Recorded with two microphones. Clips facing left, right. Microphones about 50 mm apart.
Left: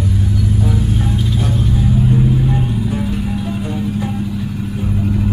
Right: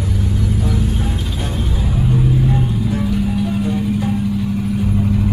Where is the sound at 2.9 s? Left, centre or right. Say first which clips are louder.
Right 1 dB; centre.